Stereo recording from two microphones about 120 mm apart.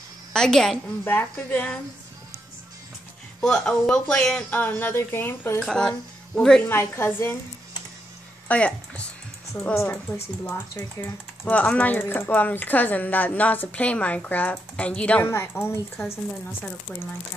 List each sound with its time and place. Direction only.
0.3 s a woman's voice: 5° left (ahead or behind)
1.0 s speech: 15° left (ahead or behind)
3.3 s speech: 5° left (ahead or behind)
5.7 s speech: 5° left (ahead or behind)
6.7 s a woman's voice: 20° left (ahead or behind)
8.5 s speech: 10° left (ahead or behind)
9.8 s a woman's voice: 20° left (ahead or behind)
11.4 s speech: 10° left (ahead or behind)
15.2 s a woman's voice: 20° left (ahead or behind)